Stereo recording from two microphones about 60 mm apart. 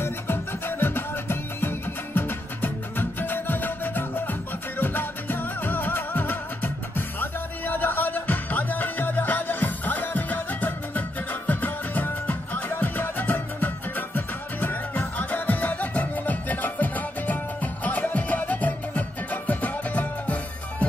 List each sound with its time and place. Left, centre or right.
0.0 s music: left